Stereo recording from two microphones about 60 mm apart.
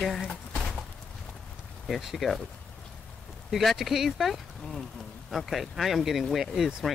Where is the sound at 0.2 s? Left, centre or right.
Centre.